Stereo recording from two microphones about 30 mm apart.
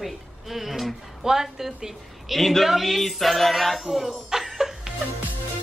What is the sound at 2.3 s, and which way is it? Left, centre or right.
A woman's voice, centre.